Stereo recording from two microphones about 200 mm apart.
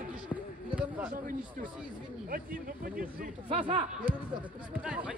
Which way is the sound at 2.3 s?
45° right (ahead or behind).